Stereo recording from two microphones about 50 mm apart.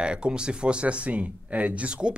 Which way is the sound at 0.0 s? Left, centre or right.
Centre.